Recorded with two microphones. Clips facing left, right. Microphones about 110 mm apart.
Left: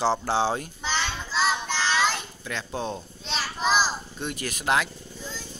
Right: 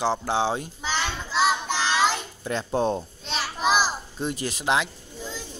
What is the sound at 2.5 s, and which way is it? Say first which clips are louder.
Speech: right 7 dB; 40° right (ahead or behind).